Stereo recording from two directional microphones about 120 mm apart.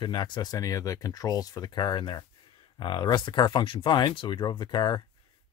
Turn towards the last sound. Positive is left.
turn(degrees=40)  # may be behind; listen again after turning